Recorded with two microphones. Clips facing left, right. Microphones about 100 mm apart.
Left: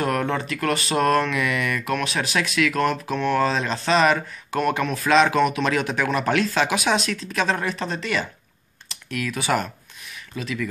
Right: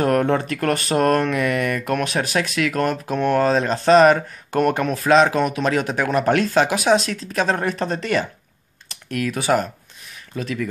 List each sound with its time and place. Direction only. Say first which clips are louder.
0.0 s speech: right 5 dB; 45° right (ahead or behind)